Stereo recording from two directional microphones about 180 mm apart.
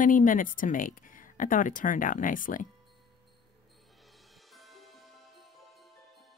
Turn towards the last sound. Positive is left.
turn(degrees=0)  # may be behind; listen again after turning